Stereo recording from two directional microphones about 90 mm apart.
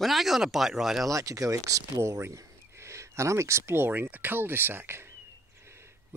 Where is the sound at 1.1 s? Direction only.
40° right (ahead or behind).